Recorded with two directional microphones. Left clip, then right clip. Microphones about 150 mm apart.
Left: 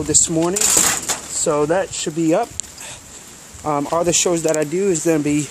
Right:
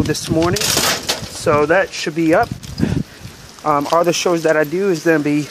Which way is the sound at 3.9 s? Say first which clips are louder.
Right 3 dB; 10° left (ahead or behind).